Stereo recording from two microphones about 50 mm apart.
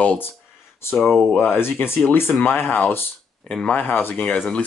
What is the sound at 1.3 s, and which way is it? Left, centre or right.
Speech, left.